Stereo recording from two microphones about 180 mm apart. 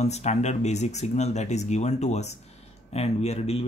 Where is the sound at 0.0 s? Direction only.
40° left (ahead or behind).